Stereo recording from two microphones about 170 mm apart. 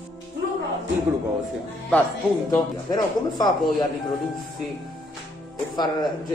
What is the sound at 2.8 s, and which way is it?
Speech, 25° left (ahead or behind).